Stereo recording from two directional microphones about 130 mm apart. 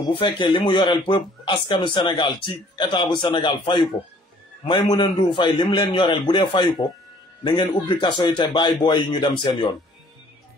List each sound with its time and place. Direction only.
0.4 s a man's voice: 40° left (ahead or behind)
4.9 s a man's voice: 40° left (ahead or behind)